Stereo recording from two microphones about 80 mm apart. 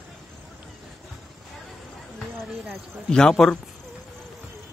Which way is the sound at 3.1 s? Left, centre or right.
Centre.